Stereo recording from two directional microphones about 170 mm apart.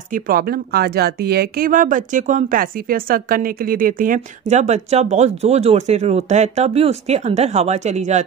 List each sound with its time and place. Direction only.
0.1 s speech: 60° right (ahead or behind); by 8.3 s 40° right (ahead or behind)